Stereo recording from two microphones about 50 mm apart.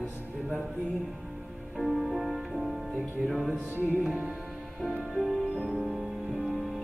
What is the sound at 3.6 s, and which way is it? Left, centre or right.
Music, right.